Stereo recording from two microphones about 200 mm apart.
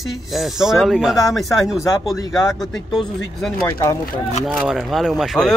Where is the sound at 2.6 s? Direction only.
Centre (ahead or behind).